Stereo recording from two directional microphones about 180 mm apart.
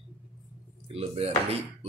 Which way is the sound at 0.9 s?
35° right (ahead or behind).